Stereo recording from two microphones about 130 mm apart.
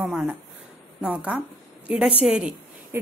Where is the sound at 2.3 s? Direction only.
10° right (ahead or behind).